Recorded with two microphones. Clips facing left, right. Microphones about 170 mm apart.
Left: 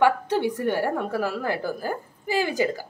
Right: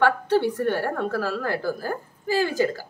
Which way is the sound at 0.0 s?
15° left (ahead or behind).